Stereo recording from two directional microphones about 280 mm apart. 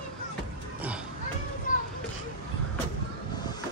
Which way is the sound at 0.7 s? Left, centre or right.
Centre.